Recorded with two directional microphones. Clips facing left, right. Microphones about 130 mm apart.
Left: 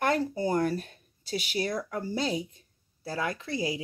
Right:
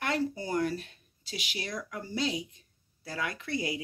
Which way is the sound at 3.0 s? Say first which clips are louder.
Left 4 dB; 30° left (ahead or behind).